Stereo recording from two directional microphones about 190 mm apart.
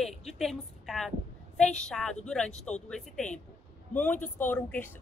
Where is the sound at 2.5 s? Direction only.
35° left (ahead or behind).